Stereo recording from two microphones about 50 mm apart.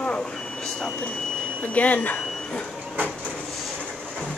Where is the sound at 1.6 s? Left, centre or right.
Left.